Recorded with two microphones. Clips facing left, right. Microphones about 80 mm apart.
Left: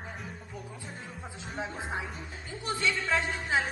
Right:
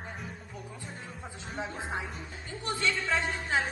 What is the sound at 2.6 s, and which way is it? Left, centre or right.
Speech, centre.